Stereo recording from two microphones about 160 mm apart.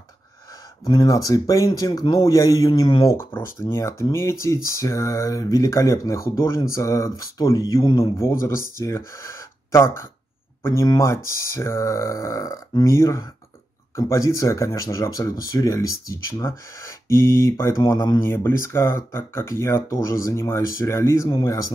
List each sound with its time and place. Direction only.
0.8 s speech: 25° left (ahead or behind)
3.2 s speech: 15° left (ahead or behind)